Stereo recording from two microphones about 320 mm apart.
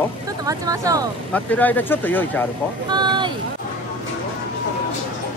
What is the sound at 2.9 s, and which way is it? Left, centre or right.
Speech, centre.